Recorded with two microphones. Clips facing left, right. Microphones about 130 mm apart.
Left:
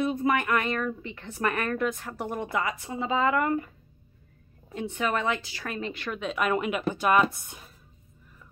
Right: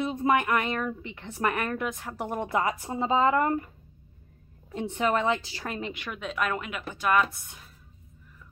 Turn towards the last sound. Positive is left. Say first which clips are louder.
# left 2 dB
turn(degrees=15)  # may be behind; listen again after turning